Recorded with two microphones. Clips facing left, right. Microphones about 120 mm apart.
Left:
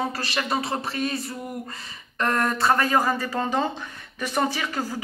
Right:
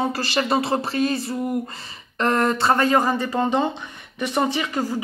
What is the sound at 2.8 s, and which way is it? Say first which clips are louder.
Speech: right 3 dB; centre (ahead or behind).